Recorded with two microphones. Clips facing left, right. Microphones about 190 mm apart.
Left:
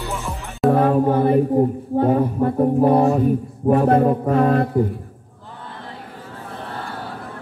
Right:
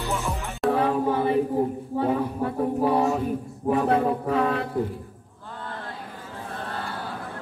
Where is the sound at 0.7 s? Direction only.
50° left (ahead or behind).